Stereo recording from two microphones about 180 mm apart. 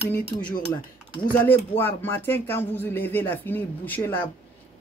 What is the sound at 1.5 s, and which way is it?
Speech, 10° left (ahead or behind).